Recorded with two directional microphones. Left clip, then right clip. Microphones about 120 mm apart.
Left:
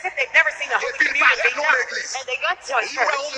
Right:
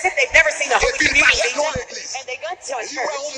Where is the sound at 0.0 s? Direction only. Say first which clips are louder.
Right 3 dB; 45° right (ahead or behind).